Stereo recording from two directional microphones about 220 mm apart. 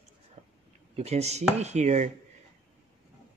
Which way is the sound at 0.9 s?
30° right (ahead or behind).